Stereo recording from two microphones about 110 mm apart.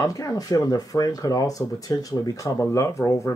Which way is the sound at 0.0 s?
30° left (ahead or behind).